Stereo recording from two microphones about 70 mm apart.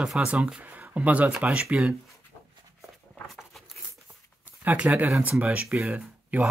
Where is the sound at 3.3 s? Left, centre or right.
Centre.